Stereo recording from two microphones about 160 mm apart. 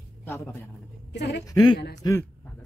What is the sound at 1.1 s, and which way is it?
Speech, 90° left.